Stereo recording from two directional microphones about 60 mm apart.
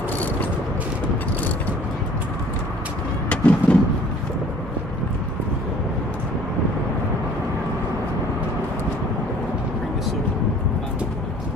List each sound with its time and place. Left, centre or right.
3.3 s vehicle: left